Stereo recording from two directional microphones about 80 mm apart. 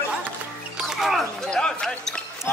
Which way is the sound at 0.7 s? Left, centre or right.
Centre.